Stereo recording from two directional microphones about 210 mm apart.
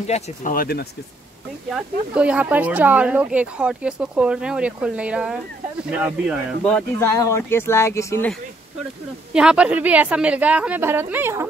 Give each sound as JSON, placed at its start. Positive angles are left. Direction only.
{"t": 0.0, "sound": "speech", "side_deg": 35}
{"t": 1.7, "sound": "speech", "side_deg": -5}
{"t": 9.3, "sound": "speech", "side_deg": -5}